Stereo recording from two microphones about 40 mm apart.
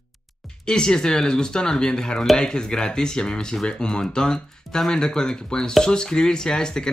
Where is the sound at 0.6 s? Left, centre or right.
Centre.